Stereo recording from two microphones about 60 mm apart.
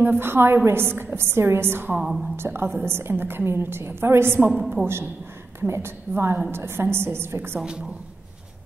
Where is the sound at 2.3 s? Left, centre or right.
Right.